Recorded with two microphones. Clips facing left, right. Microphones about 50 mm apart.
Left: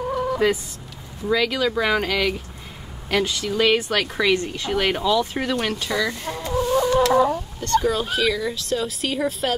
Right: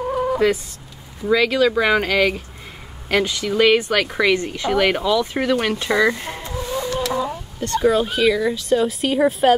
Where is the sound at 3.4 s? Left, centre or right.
Centre.